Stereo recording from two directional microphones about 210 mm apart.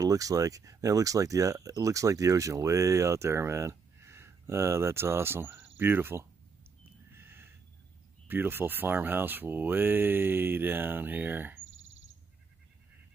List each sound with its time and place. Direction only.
0.0 s speech: 15° right (ahead or behind)
7.1 s a sound: 10° right (ahead or behind)
8.3 s speech: 10° right (ahead or behind)
11.6 s frog: 65° right (ahead or behind)